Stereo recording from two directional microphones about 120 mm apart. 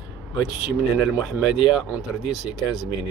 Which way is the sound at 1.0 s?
10° right (ahead or behind).